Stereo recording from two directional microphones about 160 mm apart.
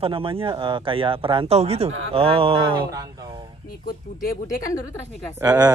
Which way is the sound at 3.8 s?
65° left (ahead or behind).